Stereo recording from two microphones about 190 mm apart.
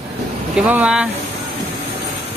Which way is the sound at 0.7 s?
5° right (ahead or behind).